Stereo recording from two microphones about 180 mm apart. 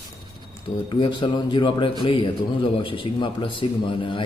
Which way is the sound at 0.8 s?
25° left (ahead or behind).